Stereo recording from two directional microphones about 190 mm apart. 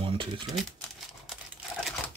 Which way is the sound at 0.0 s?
25° right (ahead or behind).